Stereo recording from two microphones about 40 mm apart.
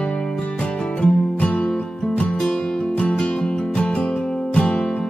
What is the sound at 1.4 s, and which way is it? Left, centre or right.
Music, left.